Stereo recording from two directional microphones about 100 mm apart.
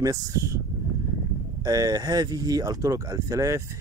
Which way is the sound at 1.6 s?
40° right (ahead or behind).